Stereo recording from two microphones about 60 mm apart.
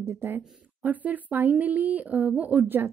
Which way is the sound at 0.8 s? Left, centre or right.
Right.